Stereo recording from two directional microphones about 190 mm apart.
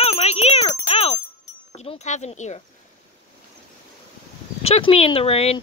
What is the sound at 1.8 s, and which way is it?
Speech, 35° left (ahead or behind).